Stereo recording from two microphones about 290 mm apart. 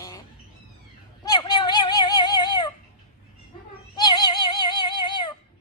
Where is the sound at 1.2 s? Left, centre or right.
Centre.